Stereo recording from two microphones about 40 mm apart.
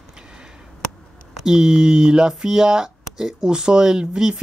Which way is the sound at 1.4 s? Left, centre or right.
Centre.